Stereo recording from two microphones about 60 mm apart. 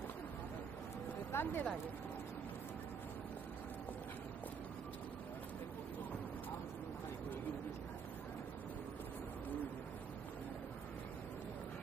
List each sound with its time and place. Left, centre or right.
1.3 s speech: left